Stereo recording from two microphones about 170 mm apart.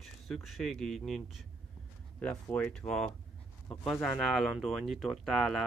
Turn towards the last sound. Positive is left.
turn(degrees=0)  # may be behind; listen again after turning